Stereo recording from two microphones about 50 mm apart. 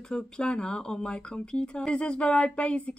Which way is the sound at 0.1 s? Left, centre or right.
Centre.